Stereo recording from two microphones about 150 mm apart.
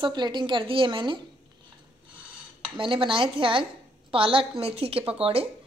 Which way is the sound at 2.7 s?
35° right (ahead or behind).